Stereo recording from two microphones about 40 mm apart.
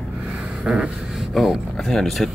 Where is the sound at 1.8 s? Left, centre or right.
Centre.